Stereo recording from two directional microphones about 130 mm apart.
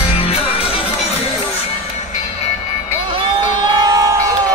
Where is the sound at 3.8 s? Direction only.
30° right (ahead or behind).